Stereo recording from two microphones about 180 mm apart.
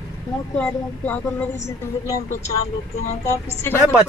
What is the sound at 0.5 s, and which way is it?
A woman's voice, 10° left (ahead or behind).